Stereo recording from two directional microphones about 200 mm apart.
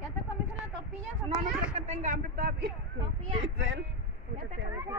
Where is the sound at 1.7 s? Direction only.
35° right (ahead or behind).